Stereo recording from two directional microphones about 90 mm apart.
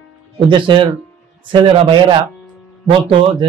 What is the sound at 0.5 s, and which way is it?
Speech, 65° right (ahead or behind).